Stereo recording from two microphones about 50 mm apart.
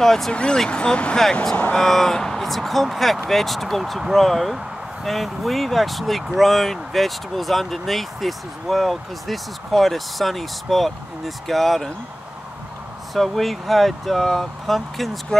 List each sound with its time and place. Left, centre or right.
0.0 s speech: centre
0.3 s speech: centre
13.1 s speech: centre